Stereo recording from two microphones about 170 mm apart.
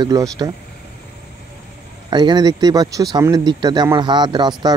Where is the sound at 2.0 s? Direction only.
25° right (ahead or behind).